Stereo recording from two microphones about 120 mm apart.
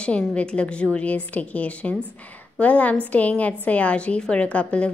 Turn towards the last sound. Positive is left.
turn(degrees=10)  # may be behind; listen again after turning